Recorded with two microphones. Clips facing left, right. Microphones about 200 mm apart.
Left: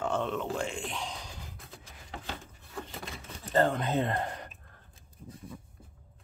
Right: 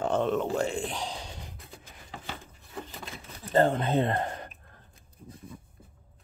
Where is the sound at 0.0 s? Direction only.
35° right (ahead or behind).